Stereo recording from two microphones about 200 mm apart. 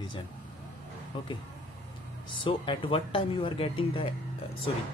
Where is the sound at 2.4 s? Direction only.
25° left (ahead or behind).